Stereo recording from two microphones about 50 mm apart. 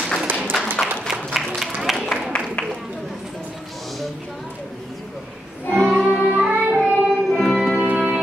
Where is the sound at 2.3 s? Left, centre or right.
Centre.